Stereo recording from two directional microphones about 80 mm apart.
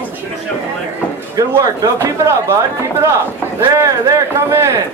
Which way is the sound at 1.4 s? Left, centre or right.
Right.